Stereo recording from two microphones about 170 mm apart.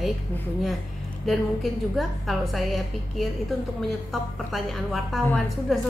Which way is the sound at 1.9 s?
Centre (ahead or behind).